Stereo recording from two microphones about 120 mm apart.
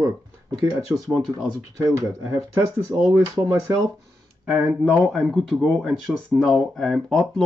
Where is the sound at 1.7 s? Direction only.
25° right (ahead or behind).